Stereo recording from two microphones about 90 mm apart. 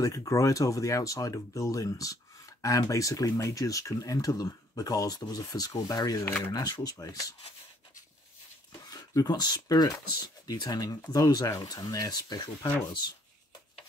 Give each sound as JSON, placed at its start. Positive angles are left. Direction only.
{"t": 0.0, "sound": "speech", "side_deg": 40}
{"t": 8.8, "sound": "speech", "side_deg": 45}